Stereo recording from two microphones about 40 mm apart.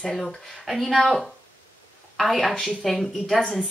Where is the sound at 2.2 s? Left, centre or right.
Centre.